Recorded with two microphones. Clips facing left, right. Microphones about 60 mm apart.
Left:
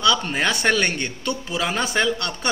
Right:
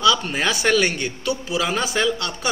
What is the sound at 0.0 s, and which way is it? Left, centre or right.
A man's voice, centre.